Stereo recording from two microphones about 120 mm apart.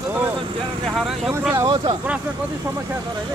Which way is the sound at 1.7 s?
45° right (ahead or behind).